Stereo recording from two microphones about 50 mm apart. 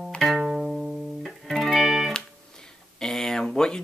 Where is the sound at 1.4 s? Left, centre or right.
Centre.